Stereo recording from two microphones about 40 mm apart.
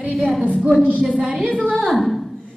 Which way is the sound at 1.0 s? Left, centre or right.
Right.